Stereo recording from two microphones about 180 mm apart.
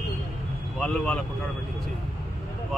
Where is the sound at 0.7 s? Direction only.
5° left (ahead or behind).